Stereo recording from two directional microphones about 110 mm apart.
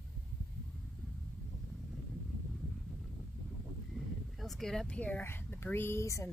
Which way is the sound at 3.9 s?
Centre (ahead or behind).